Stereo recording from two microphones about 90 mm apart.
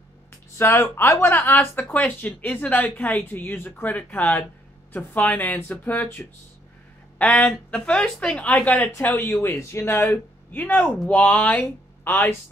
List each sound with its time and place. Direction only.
0.6 s speech: 30° left (ahead or behind)
7.2 s speech: 15° left (ahead or behind)
9.0 s speech: 25° left (ahead or behind)